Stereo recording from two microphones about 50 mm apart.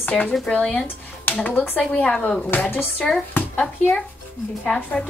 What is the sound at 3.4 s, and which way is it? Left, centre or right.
Speech, left.